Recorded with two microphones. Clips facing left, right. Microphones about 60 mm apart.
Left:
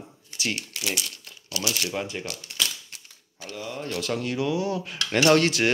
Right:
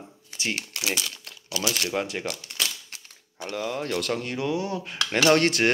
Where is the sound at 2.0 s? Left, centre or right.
Right.